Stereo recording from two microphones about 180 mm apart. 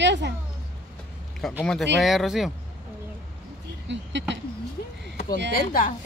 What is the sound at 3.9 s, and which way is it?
Speech, 80° right.